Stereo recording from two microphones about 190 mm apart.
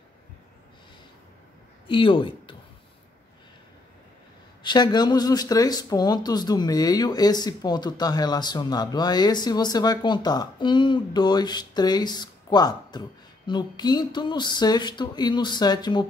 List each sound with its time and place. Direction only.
1.9 s a man's voice: 25° left (ahead or behind)
4.6 s speech: 20° left (ahead or behind)